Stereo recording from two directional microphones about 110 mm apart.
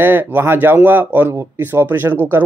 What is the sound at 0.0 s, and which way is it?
Speech, 20° right (ahead or behind).